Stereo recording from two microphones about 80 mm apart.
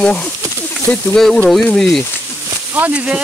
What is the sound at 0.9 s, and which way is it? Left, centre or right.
Speech, centre.